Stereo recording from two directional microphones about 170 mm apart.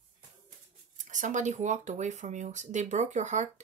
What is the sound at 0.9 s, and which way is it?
Speech, 45° right (ahead or behind).